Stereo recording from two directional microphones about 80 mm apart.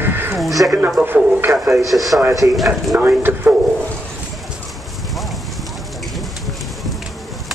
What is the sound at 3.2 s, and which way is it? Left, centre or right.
Speech, right.